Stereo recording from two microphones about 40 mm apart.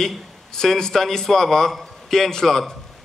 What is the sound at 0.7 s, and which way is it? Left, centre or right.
A man's voice, centre.